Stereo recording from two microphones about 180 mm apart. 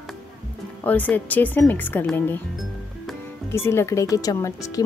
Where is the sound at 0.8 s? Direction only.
10° left (ahead or behind).